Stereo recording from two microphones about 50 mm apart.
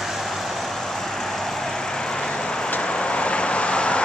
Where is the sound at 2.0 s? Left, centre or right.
Centre.